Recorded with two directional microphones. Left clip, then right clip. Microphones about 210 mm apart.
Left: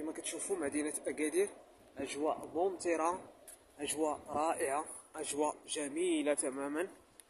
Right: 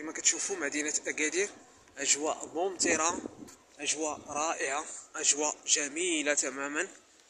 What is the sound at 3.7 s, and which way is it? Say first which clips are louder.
Speech: right 2 dB; 25° left (ahead or behind).